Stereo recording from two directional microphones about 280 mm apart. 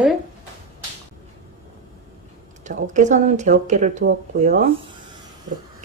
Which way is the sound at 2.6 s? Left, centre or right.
Right.